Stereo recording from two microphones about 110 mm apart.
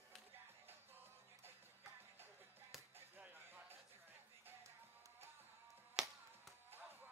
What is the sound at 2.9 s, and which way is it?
Music, 20° right (ahead or behind).